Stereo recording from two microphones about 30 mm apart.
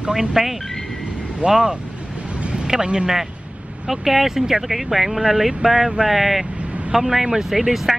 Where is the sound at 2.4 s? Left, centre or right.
Right.